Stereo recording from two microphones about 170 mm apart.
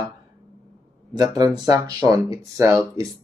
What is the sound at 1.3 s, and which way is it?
Speech, 25° right (ahead or behind).